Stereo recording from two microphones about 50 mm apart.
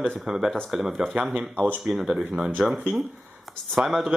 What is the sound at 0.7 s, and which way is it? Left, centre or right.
Speech, centre.